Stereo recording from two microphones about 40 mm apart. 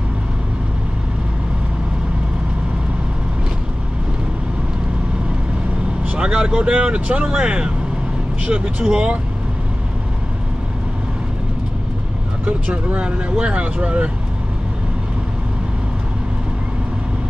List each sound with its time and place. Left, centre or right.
6.0 s speech: right
12.4 s speech: right